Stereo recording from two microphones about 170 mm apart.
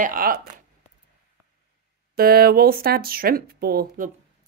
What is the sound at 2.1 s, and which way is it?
Speech, 65° right (ahead or behind).